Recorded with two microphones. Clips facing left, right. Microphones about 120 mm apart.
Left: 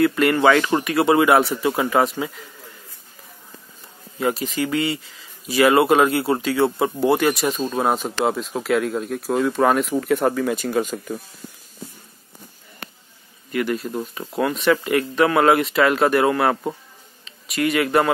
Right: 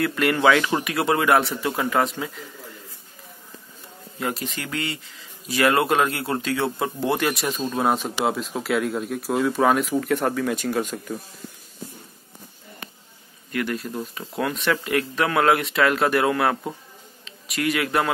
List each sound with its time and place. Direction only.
0.0 s speech: centre (ahead or behind)
4.2 s speech: centre (ahead or behind)
12.8 s a sound: 75° left (ahead or behind)
13.5 s a man's voice: centre (ahead or behind)